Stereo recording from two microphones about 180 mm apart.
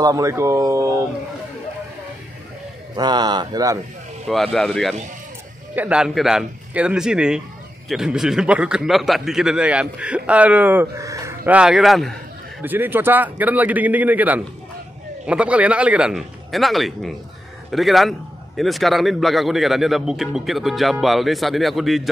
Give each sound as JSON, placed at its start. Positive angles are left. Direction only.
{"t": 0.0, "sound": "a man's voice", "side_deg": -20}
{"t": 3.0, "sound": "speech", "side_deg": -25}
{"t": 4.3, "sound": "a man's voice", "side_deg": 0}